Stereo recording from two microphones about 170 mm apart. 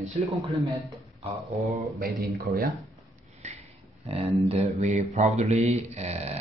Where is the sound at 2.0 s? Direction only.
60° right (ahead or behind).